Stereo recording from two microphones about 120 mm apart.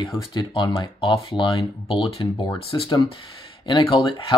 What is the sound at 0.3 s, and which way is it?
Speech, 40° left (ahead or behind).